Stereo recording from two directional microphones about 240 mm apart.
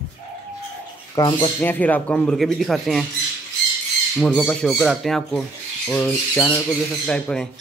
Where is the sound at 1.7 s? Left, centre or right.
Centre.